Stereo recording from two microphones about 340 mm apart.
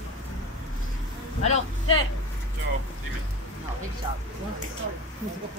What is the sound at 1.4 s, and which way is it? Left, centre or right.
Speech, centre.